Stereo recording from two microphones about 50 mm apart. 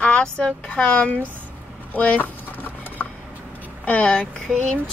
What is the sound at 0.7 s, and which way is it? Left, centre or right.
Speech, left.